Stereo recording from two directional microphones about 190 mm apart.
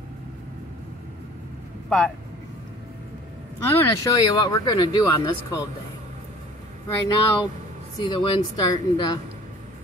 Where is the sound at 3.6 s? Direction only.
15° left (ahead or behind).